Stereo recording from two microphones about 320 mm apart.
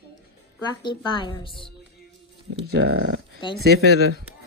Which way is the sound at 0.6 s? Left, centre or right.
Centre.